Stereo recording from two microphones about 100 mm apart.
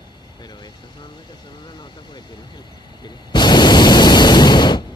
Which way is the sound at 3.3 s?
45° left (ahead or behind).